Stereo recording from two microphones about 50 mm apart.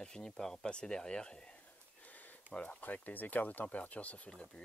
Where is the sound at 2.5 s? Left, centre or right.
Left.